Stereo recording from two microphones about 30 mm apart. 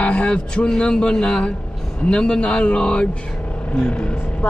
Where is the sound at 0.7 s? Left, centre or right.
Left.